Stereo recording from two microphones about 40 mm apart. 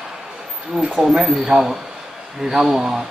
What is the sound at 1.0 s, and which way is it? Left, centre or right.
Speech, centre.